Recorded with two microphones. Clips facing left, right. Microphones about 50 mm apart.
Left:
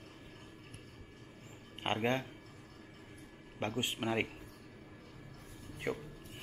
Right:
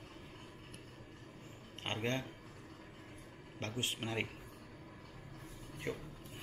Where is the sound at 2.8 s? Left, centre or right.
Centre.